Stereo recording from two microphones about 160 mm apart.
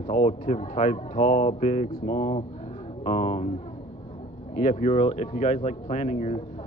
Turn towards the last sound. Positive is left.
turn(degrees=45)  # may be behind; listen again after turning